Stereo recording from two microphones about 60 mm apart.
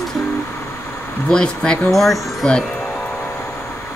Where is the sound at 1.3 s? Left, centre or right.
Centre.